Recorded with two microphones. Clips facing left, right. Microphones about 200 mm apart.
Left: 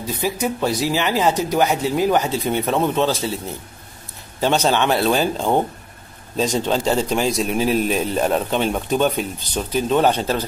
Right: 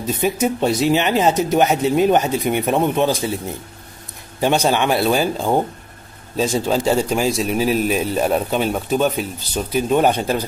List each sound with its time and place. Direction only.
0.0 s speech: 20° right (ahead or behind)